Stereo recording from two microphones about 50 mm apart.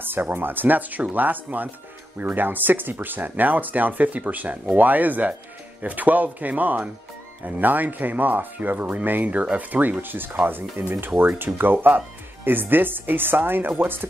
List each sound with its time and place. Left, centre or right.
0.0 s speech: right